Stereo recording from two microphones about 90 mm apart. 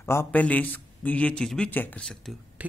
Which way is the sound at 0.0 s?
25° left (ahead or behind).